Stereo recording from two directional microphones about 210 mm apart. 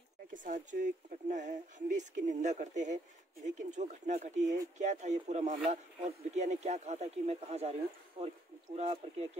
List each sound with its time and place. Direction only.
0.3 s speech: 40° right (ahead or behind)